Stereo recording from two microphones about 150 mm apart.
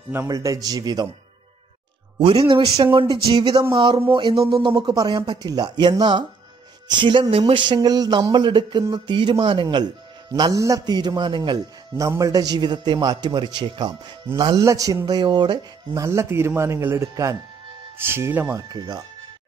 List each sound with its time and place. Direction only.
0.1 s a man's voice: 20° right (ahead or behind)
2.1 s a man's voice: 35° right (ahead or behind); by 18.6 s 15° right (ahead or behind)
18.7 s a man's voice: 30° right (ahead or behind)